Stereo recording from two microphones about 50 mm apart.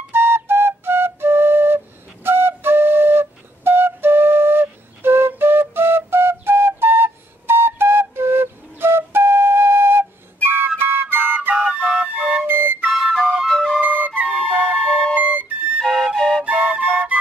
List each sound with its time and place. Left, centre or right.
0.1 s flute: right
11.6 s flute: right
12.4 s flute: right
12.9 s music: centre
13.7 s flute: right
15.8 s flute: centre
16.4 s flute: right